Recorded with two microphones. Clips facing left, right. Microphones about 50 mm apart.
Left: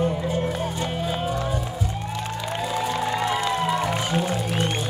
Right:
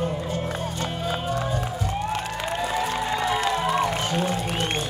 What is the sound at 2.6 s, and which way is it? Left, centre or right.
Music, right.